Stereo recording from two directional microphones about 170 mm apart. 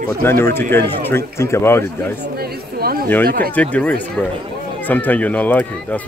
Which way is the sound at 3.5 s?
10° left (ahead or behind).